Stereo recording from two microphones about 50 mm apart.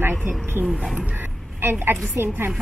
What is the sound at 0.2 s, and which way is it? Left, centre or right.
A woman's voice, right.